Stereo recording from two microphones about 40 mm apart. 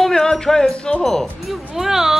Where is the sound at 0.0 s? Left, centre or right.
Centre.